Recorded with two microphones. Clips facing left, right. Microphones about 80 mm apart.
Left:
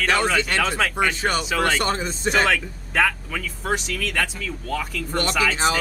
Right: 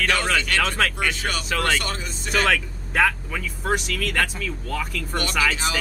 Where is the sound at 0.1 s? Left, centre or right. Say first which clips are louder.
Left 2 dB; left.